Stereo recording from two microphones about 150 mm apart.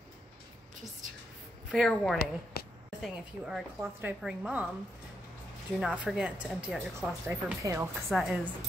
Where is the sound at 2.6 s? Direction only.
90° left.